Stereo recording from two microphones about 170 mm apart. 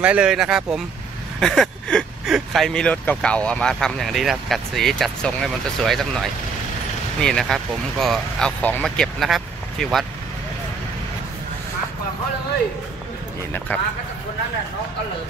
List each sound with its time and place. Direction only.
0.0 s speech: 5° right (ahead or behind)